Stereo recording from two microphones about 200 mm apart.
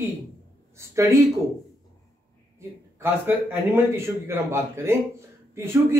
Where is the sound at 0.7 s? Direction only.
15° right (ahead or behind).